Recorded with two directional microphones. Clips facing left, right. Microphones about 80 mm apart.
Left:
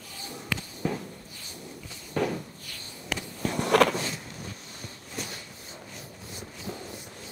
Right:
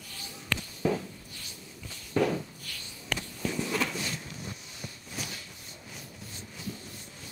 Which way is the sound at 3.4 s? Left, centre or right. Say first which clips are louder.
Left 10 dB; left.